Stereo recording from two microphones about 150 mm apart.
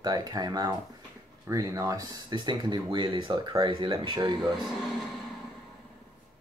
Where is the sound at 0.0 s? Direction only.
25° right (ahead or behind).